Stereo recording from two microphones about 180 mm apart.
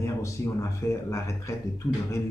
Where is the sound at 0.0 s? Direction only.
15° left (ahead or behind).